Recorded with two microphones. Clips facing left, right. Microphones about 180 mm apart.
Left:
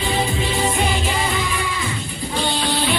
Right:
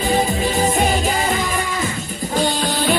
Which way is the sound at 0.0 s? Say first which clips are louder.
Right 4 dB; 40° right (ahead or behind).